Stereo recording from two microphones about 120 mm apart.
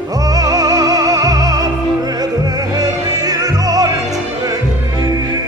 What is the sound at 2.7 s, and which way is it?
Music, 30° right (ahead or behind).